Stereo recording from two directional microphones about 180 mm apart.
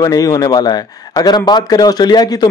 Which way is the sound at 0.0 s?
20° left (ahead or behind).